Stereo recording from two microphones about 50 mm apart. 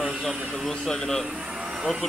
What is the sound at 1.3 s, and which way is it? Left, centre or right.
Vehicle, centre.